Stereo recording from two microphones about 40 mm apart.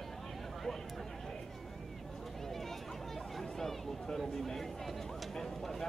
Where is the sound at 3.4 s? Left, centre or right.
Centre.